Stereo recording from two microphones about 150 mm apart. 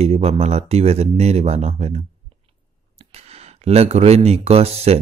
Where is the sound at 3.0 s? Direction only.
45° right (ahead or behind).